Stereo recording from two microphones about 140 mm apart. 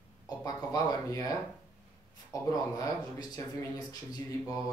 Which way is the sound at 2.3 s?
25° left (ahead or behind).